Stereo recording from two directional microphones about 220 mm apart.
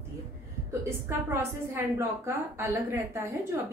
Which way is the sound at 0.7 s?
10° right (ahead or behind).